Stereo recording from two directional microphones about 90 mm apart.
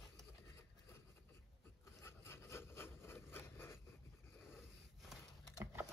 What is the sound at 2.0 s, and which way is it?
Wood, 30° left (ahead or behind).